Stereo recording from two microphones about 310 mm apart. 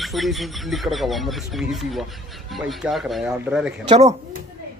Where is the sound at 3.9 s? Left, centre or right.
Right.